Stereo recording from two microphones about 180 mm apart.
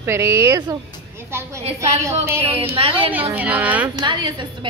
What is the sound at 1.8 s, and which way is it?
Speech, 15° right (ahead or behind).